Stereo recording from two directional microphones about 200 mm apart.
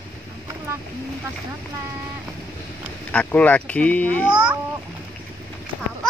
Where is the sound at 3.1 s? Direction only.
5° left (ahead or behind).